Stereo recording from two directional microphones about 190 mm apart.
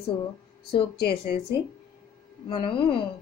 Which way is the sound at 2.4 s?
25° left (ahead or behind).